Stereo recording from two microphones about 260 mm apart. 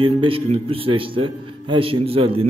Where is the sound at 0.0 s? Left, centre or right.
Centre.